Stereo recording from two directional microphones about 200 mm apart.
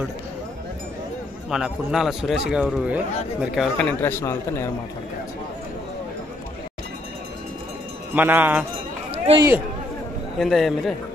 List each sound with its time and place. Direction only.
1.5 s a man's voice: centre (ahead or behind)
4.0 s a man's voice: 10° left (ahead or behind)
8.1 s a man's voice: 10° right (ahead or behind)
9.1 s run: 30° right (ahead or behind)
10.4 s a man's voice: centre (ahead or behind)